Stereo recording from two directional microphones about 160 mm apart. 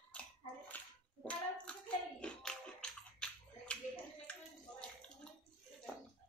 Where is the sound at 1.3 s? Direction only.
5° left (ahead or behind).